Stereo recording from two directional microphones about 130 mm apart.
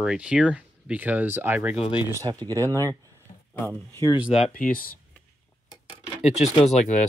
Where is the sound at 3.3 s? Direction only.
90° left.